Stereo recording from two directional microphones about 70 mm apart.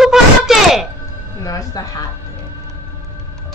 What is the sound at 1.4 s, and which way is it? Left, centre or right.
Speech, left.